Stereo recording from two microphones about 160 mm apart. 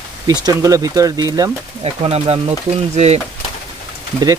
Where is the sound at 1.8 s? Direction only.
35° right (ahead or behind).